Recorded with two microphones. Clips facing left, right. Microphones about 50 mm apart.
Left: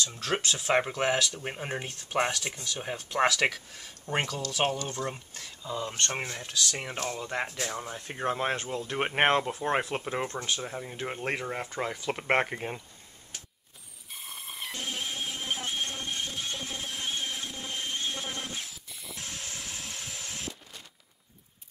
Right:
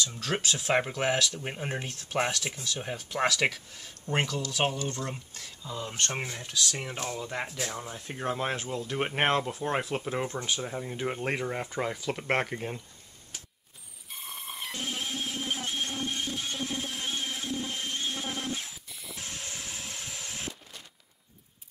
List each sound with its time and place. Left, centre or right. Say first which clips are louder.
0.0 s speech: even; centre
10.2 s speech: even; centre
12.1 s speech: left 4 dB; centre
14.1 s music: right 1 dB; centre